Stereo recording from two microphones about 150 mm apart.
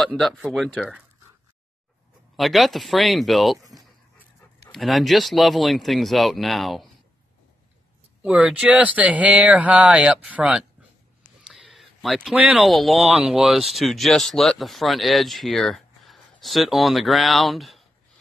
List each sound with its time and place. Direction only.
0.0 s speech: centre (ahead or behind)
2.3 s speech: centre (ahead or behind)
4.7 s speech: centre (ahead or behind)
8.2 s speech: 5° right (ahead or behind)